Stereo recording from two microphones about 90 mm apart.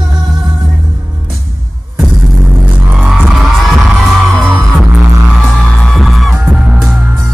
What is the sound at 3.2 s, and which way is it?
Music, centre (ahead or behind).